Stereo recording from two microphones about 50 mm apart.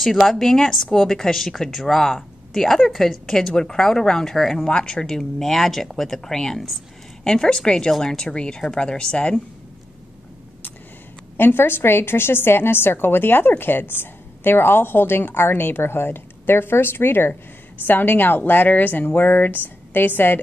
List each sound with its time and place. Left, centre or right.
0.0 s a woman's voice: centre
4.6 s speech: centre
11.3 s a woman's voice: left